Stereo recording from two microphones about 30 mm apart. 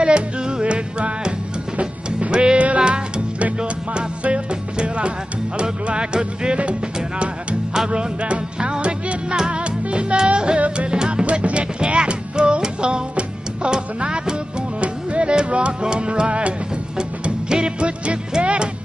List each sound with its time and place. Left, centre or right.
0.0 s music: right
3.9 s music: right
6.6 s music: right
11.4 s music: right